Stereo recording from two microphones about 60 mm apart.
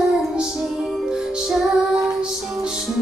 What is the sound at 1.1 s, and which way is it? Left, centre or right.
Music, centre.